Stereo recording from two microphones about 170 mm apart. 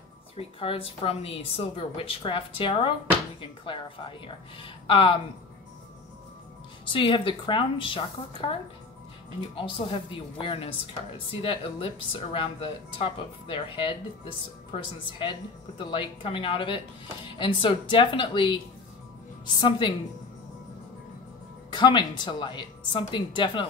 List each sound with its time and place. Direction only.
0.4 s speech: 35° left (ahead or behind)
6.9 s speech: 30° left (ahead or behind)
9.6 s a woman's voice: 30° left (ahead or behind)
21.6 s a woman's voice: 25° left (ahead or behind)